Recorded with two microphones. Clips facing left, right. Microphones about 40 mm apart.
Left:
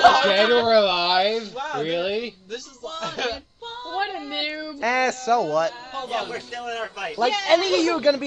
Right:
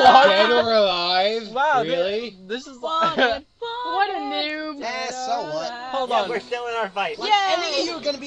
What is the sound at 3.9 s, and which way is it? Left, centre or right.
Speech, centre.